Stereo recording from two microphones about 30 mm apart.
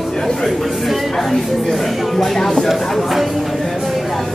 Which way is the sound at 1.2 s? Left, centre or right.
Centre.